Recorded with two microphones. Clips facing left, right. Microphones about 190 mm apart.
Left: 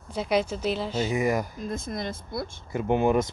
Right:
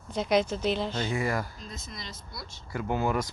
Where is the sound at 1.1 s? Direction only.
20° left (ahead or behind).